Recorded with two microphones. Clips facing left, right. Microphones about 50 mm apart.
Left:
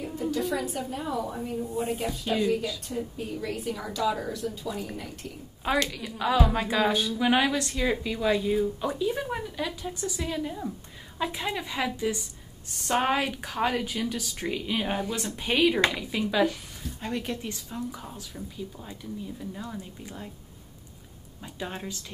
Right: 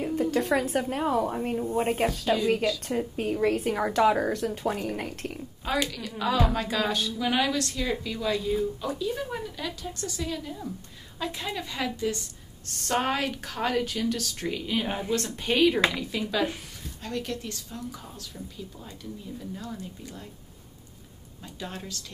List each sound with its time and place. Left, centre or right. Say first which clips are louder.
0.0 s a woman's voice: right 3 dB; right
1.6 s a woman's voice: right 4 dB; right
5.9 s a woman's voice: left 1 dB; centre
19.5 s a woman's voice: even; centre
21.5 s a woman's voice: left 2 dB; left